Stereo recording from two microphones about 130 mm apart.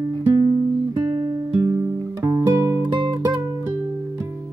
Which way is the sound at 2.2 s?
25° right (ahead or behind).